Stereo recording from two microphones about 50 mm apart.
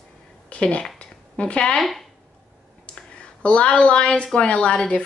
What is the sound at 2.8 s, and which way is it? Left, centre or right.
A woman's voice, centre.